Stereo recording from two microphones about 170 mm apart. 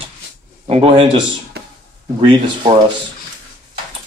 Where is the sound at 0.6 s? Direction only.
35° right (ahead or behind).